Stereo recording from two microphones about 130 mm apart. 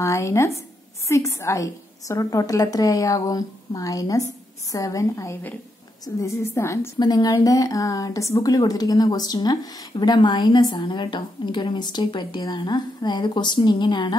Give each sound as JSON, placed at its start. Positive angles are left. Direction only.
{"t": 0.0, "sound": "a woman's voice", "side_deg": 20}
{"t": 7.0, "sound": "a woman's voice", "side_deg": 35}